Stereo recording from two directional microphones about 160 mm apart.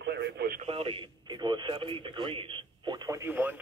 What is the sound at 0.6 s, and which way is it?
Speech, 35° right (ahead or behind).